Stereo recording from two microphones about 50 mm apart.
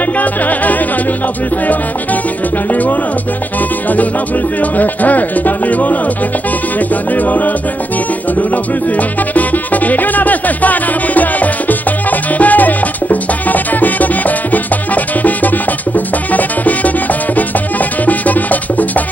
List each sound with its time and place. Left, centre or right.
0.2 s music: left
4.7 s music: left
7.2 s music: left
9.3 s music: left
18.0 s music: left